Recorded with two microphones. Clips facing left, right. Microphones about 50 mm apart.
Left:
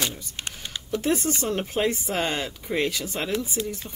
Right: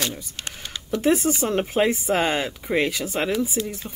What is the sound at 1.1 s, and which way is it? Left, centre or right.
Speech, centre.